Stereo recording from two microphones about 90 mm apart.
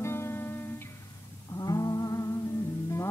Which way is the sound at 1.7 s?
40° left (ahead or behind).